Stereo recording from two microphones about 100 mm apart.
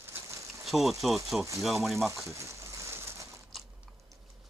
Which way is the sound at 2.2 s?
30° right (ahead or behind).